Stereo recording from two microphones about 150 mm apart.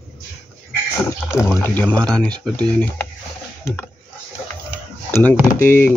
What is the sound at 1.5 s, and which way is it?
Speech, 10° left (ahead or behind).